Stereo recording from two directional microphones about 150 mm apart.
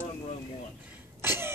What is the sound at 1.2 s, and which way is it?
Throat clearing, 15° right (ahead or behind).